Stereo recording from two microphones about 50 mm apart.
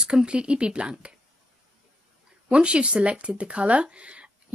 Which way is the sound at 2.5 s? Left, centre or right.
Right.